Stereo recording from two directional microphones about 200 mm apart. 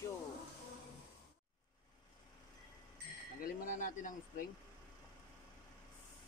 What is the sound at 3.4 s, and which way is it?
Speech, 45° left (ahead or behind).